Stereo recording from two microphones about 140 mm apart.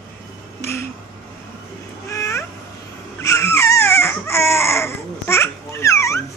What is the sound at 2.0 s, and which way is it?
Babbling, 20° left (ahead or behind).